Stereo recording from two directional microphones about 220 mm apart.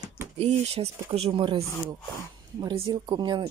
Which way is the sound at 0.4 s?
25° right (ahead or behind).